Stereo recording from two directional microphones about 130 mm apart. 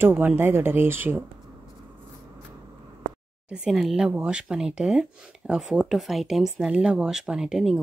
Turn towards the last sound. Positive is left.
turn(degrees=-5)  # may be behind; listen again after turning